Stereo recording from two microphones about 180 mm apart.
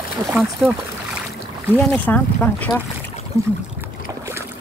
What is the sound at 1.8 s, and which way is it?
Speech, 10° left (ahead or behind).